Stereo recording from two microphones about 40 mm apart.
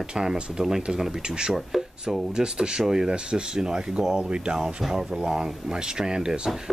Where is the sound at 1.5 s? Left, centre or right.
Centre.